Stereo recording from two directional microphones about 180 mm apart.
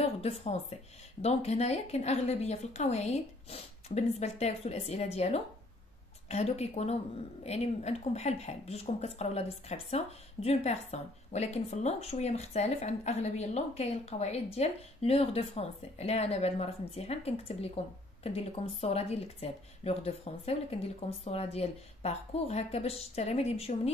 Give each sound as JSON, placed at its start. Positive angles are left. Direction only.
{"t": 0.0, "sound": "a woman's voice", "side_deg": 35}